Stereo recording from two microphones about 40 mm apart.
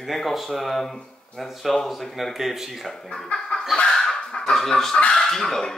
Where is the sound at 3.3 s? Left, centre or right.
Centre.